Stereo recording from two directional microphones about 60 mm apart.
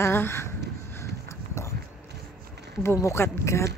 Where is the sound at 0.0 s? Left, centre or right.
Left.